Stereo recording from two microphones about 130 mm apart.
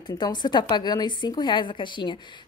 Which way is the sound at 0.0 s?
35° left (ahead or behind).